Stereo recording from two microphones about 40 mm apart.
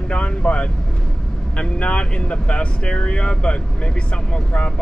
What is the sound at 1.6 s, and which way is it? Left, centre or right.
Speech, left.